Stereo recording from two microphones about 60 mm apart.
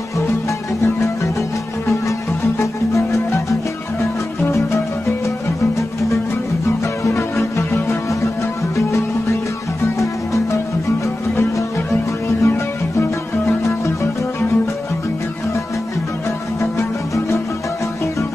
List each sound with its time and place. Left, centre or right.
0.8 s music: left
2.6 s music: left
7.2 s music: left
12.4 s music: left
16.7 s music: left